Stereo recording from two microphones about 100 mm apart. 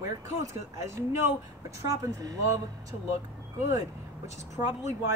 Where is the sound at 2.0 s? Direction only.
35° right (ahead or behind).